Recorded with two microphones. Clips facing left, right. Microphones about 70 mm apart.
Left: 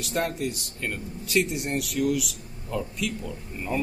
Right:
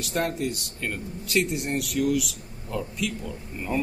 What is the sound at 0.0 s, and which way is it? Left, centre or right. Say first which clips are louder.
Speech: right 1 dB; centre.